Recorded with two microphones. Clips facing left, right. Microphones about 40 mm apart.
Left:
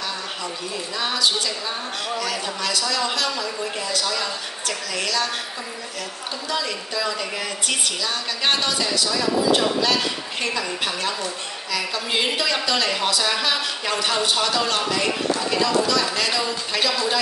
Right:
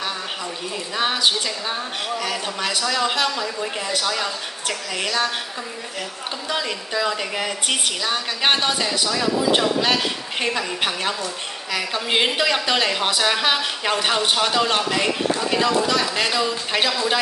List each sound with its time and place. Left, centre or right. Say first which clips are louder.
0.9 s a woman's voice: right 2 dB; right
6.5 s a woman's voice: right 1 dB; right